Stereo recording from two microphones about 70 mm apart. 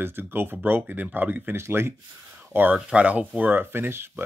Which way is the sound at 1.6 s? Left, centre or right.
Right.